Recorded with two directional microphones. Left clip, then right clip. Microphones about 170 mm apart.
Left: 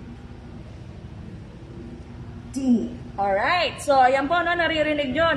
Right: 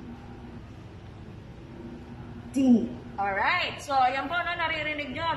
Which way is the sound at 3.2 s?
50° left (ahead or behind).